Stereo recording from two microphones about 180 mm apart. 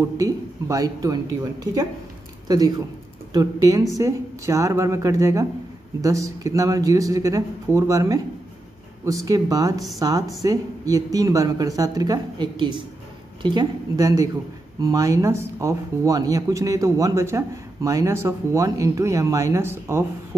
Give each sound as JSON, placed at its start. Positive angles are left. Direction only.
{"t": 0.2, "sound": "speech", "side_deg": -20}
{"t": 2.4, "sound": "speech", "side_deg": -20}